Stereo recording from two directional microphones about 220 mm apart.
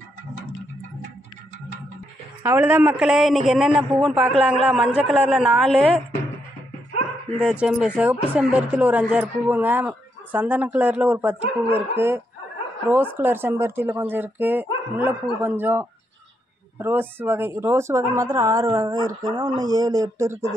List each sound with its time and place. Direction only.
2.4 s a man's voice: 10° right (ahead or behind)
7.2 s a man's voice: 5° left (ahead or behind); by 20.4 s 15° right (ahead or behind)